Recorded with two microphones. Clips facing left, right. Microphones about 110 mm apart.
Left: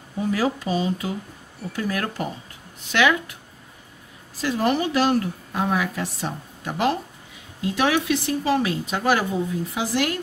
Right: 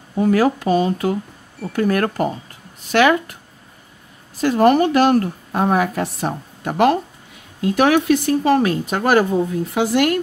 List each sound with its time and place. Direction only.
0.2 s a woman's voice: 55° right (ahead or behind)
4.4 s a woman's voice: 50° right (ahead or behind)